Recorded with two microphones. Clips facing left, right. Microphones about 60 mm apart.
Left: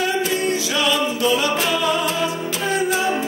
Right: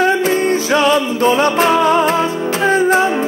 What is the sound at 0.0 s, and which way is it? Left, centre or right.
Music, right.